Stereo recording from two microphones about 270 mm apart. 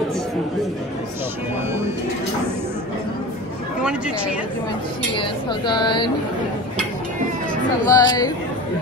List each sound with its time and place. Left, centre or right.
5.1 s speech: centre
7.8 s speech: centre